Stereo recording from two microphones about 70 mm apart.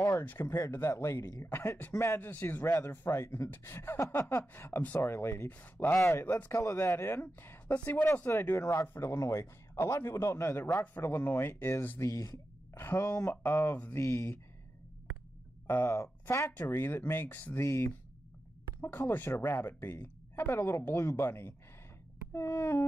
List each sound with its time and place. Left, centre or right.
0.3 s speech: left
5.9 s speech: left
8.5 s speech: left
12.0 s speech: left
12.7 s speech: left
15.6 s a sound: left
15.9 s speech: left
16.4 s speech: left
17.6 s speech: left
18.8 s speech: left